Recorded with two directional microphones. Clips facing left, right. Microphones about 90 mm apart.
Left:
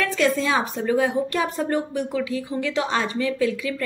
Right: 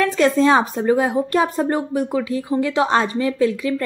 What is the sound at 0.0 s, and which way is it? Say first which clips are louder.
A woman's voice: right 6 dB; 35° right (ahead or behind).